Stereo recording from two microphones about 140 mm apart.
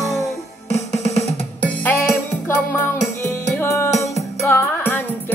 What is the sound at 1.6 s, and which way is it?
Music, 15° left (ahead or behind).